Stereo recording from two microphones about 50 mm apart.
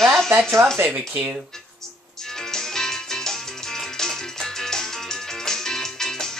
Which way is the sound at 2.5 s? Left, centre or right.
Centre.